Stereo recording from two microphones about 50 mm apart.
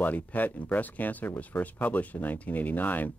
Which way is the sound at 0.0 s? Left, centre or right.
Left.